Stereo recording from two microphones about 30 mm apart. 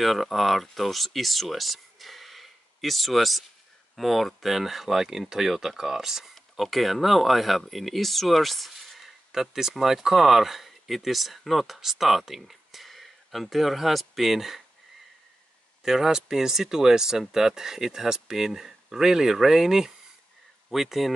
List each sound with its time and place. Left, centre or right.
0.0 s speech: centre
6.5 s speech: centre
15.8 s speech: centre